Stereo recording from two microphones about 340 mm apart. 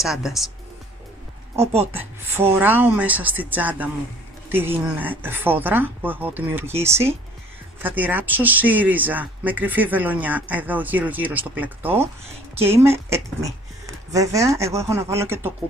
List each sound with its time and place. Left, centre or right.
0.0 s speech: centre
1.6 s speech: centre
2.6 s speech: centre